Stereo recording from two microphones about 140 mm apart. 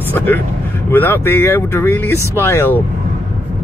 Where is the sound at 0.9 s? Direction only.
15° left (ahead or behind).